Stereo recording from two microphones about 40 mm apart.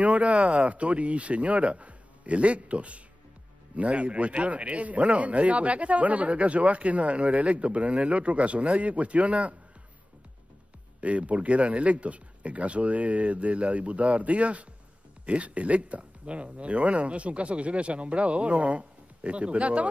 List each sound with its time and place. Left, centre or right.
0.0 s a man's voice: right
11.0 s a man's voice: right